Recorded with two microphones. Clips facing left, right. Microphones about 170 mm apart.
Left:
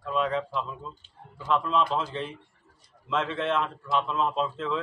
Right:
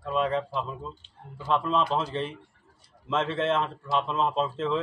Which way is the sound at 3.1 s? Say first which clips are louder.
Right 1 dB; 30° right (ahead or behind).